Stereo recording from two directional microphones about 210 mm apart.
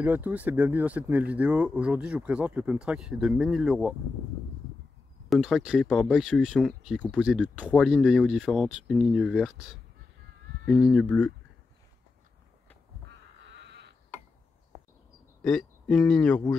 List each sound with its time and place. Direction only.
0.0 s speech: 10° right (ahead or behind)
5.3 s speech: centre (ahead or behind)
13.4 s a sound: 55° right (ahead or behind)
15.4 s speech: 5° left (ahead or behind)